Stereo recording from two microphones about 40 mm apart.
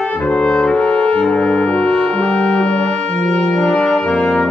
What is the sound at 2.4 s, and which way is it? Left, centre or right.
Music, centre.